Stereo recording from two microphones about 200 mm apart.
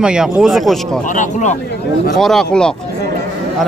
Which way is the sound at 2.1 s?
Centre (ahead or behind).